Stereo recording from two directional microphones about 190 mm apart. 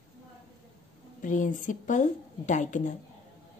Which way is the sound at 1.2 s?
45° left (ahead or behind).